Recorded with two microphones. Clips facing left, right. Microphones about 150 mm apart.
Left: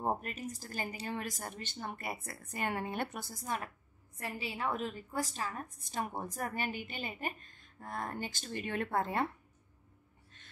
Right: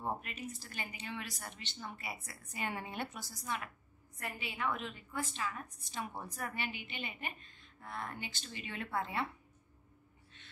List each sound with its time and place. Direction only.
0.0 s a woman's voice: 45° left (ahead or behind)
4.2 s a woman's voice: 30° left (ahead or behind)